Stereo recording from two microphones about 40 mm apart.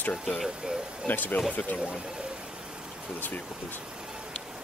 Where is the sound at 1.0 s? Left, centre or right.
Left.